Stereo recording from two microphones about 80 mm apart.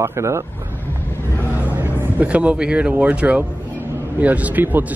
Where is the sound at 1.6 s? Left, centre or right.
Right.